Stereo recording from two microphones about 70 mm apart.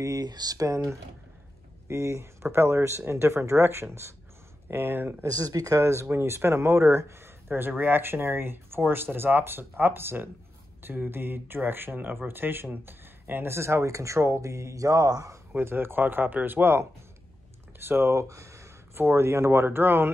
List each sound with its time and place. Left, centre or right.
0.0 s speech: right
0.3 s speech: right
5.2 s speech: right
15.5 s speech: right
17.8 s speech: right